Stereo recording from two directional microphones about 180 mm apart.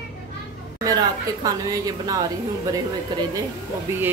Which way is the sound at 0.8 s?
20° right (ahead or behind).